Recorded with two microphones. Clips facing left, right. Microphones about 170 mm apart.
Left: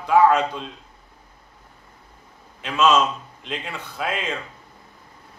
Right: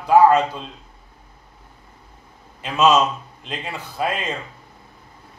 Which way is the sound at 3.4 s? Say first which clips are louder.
Right 1 dB; centre (ahead or behind).